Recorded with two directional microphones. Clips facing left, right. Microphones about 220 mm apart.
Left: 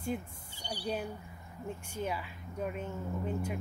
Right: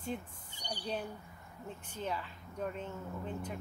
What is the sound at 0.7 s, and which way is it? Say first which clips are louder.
Speech: left 3 dB; 10° left (ahead or behind).